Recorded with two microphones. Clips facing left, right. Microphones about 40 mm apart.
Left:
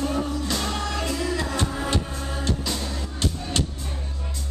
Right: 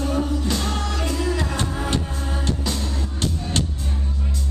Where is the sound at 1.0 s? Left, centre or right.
Centre.